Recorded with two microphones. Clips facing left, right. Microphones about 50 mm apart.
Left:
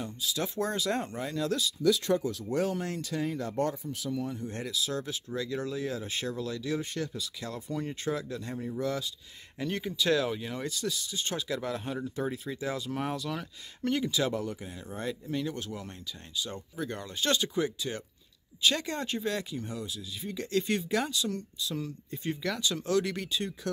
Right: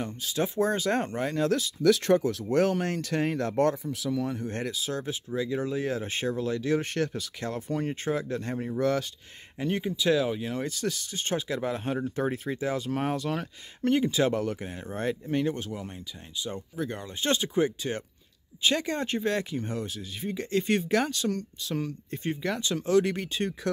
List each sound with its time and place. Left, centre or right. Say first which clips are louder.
0.0 s speech: right 1 dB; right
0.4 s speech: right 6 dB; right
1.8 s speech: right 5 dB; right
4.5 s speech: right 2 dB; right
5.8 s speech: right 4 dB; right
6.8 s speech: right 5 dB; right
7.4 s speech: right 6 dB; right
9.6 s speech: right 3 dB; centre
10.7 s speech: right 2 dB; right
14.3 s speech: right 5 dB; right
16.3 s speech: right 3 dB; centre
17.2 s speech: right 3 dB; right
20.2 s speech: right 3 dB; right
22.2 s speech: right 2 dB; right